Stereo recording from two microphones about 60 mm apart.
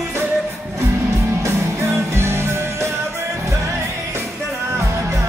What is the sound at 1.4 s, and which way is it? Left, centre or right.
Music, right.